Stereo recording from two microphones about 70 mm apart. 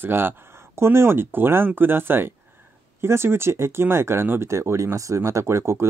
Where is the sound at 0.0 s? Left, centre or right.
Right.